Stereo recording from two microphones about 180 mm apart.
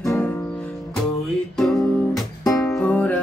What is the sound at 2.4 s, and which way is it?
Music, 15° left (ahead or behind).